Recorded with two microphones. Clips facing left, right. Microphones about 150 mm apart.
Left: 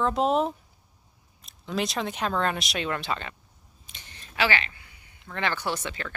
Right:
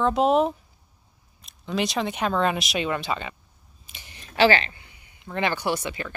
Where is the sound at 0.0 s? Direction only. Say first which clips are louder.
Right 4 dB; centre (ahead or behind).